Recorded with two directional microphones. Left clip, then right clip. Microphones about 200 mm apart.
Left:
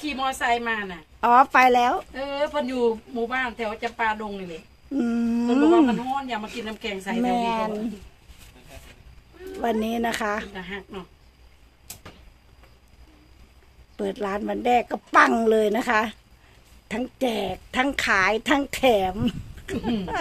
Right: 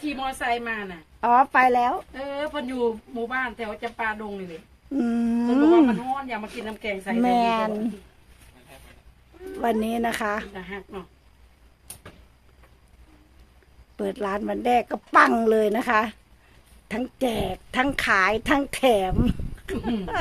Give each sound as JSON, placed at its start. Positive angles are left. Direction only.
{"t": 0.0, "sound": "a woman's voice", "side_deg": 10}
{"t": 6.8, "sound": "a woman's voice", "side_deg": 10}
{"t": 7.2, "sound": "a woman's voice", "side_deg": -15}
{"t": 9.6, "sound": "speech", "side_deg": -5}
{"t": 13.9, "sound": "speech", "side_deg": -5}